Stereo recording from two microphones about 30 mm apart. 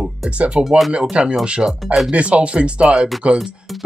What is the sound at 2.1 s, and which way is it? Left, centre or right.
Speech, right.